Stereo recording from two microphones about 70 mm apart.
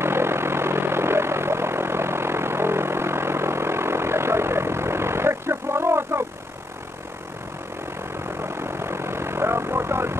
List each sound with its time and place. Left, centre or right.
0.0 s vehicle: right
8.4 s vehicle: right